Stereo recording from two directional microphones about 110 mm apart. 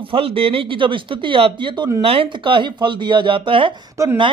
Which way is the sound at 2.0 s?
60° right (ahead or behind).